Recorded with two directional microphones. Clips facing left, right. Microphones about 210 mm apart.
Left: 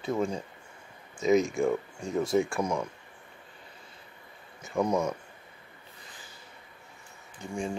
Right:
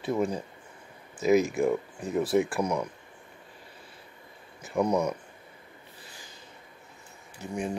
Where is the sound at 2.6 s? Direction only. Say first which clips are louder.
Right 1 dB; 15° right (ahead or behind).